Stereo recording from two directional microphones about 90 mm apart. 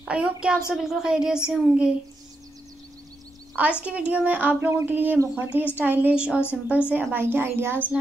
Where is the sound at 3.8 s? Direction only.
15° right (ahead or behind).